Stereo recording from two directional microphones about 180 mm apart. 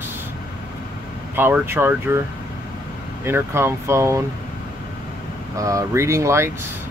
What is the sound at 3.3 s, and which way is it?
Speech, 15° right (ahead or behind).